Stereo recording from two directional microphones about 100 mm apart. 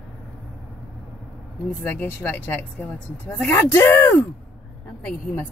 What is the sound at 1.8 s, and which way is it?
Speech, 15° left (ahead or behind).